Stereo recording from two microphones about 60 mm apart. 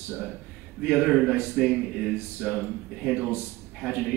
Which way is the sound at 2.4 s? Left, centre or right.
Left.